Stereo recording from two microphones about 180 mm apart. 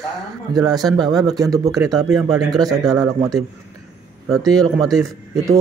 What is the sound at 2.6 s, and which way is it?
Speech, 20° right (ahead or behind).